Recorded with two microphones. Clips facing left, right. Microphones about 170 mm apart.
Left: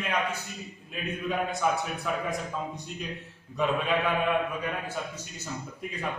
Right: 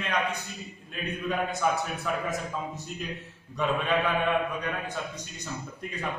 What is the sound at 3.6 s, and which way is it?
Speech, centre (ahead or behind).